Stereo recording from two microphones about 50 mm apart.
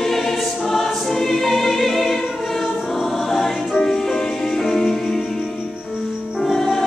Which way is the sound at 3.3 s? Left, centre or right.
Centre.